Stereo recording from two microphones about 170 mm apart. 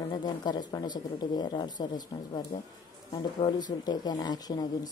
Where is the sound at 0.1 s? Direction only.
25° left (ahead or behind).